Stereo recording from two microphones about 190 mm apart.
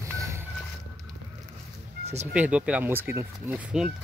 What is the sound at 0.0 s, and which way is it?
Boat, 15° right (ahead or behind).